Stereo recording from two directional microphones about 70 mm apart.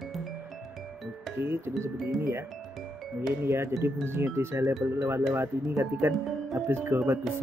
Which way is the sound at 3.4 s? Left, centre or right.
Right.